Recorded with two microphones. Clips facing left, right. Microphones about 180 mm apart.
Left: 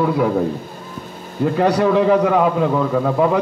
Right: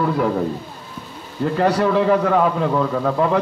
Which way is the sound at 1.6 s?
15° left (ahead or behind).